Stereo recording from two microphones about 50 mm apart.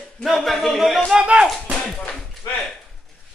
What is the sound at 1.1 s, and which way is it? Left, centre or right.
Speech, centre.